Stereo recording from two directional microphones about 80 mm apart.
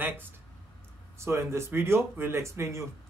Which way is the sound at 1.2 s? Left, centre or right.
Right.